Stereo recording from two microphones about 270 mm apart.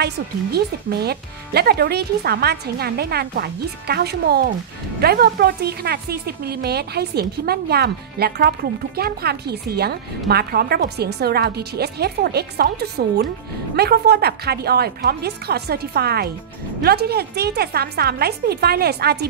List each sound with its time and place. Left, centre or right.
0.0 s a woman's voice: right